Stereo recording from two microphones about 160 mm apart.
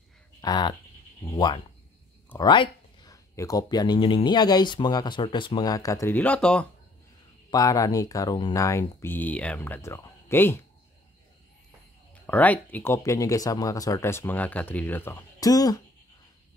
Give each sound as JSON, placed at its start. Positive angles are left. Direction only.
{"t": 0.4, "sound": "speech", "side_deg": 25}
{"t": 7.5, "sound": "speech", "side_deg": 20}
{"t": 8.6, "sound": "speech", "side_deg": 15}
{"t": 12.3, "sound": "speech", "side_deg": 10}